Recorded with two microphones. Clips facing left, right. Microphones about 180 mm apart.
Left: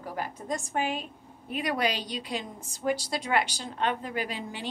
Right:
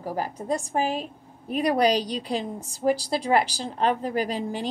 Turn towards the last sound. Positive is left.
turn(degrees=-40)  # may be behind; listen again after turning